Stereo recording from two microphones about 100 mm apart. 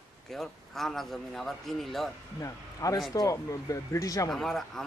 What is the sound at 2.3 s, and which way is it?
Speech, 35° left (ahead or behind).